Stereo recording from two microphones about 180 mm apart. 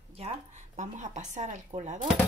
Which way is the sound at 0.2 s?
40° right (ahead or behind).